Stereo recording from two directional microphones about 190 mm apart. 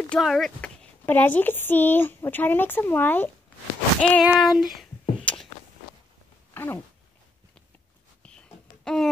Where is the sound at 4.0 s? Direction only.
5° left (ahead or behind).